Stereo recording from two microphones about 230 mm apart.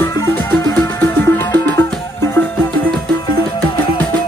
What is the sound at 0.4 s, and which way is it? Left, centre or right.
Music, centre.